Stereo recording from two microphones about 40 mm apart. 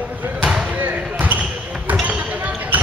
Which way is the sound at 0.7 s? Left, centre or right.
Right.